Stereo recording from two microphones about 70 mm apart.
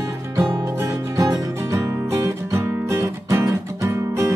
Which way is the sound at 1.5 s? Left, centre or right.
Right.